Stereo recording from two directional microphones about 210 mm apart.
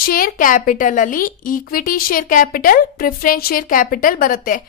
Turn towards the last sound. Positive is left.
turn(degrees=40)  # may be behind; listen again after turning